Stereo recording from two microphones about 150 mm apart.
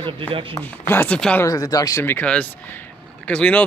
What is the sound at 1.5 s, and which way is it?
Speech, 25° left (ahead or behind).